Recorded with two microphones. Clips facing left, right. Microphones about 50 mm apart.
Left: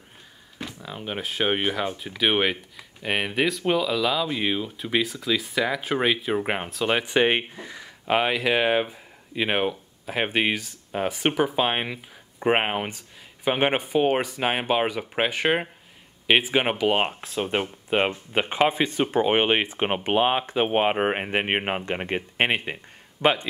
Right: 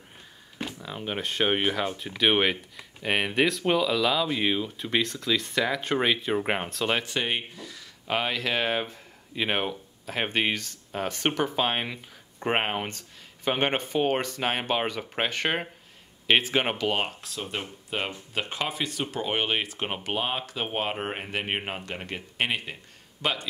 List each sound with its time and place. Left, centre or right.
0.7 s speech: centre
7.2 s speech: left